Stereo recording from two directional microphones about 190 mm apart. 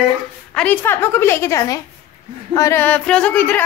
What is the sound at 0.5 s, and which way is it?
A woman's voice, 10° left (ahead or behind).